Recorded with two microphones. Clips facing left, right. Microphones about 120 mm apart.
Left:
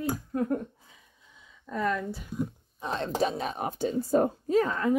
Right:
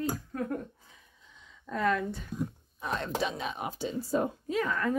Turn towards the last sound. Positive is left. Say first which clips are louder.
# left 5 dB
turn(degrees=35)  # may be behind; listen again after turning